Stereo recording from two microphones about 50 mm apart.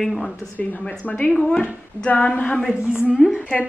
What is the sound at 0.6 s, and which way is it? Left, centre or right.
Speech, left.